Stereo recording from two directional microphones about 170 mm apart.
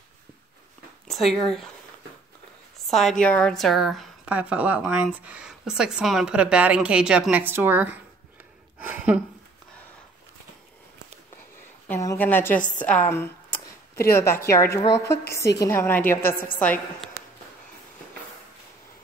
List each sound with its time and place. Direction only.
1.0 s speech: centre (ahead or behind)
2.9 s a woman's voice: centre (ahead or behind)
8.7 s a sound: 10° right (ahead or behind)
11.9 s a woman's voice: 15° left (ahead or behind)
12.8 s a sound: 10° left (ahead or behind)
14.1 s a woman's voice: 15° left (ahead or behind)
16.3 s a woman's voice: 60° left (ahead or behind)
16.5 s a woman's voice: 10° left (ahead or behind)